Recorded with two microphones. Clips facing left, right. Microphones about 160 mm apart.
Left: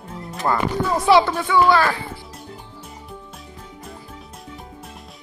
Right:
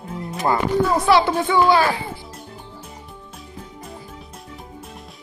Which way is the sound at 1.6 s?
15° right (ahead or behind).